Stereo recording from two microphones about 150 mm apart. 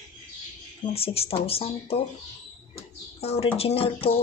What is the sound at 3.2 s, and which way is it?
Speech, 45° left (ahead or behind).